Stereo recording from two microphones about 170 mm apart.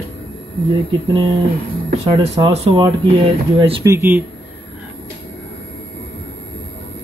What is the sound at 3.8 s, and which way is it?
Speech, 15° right (ahead or behind).